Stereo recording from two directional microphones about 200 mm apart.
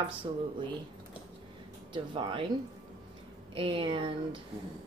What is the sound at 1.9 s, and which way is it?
Speech, 25° right (ahead or behind).